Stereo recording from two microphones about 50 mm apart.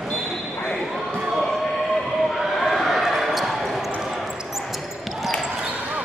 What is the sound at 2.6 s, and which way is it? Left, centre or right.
Basketball bounce, centre.